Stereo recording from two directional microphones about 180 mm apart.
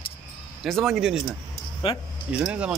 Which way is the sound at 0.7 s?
Centre (ahead or behind).